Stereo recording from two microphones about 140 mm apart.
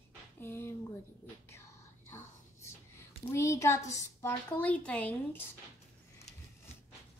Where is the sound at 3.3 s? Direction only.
20° left (ahead or behind).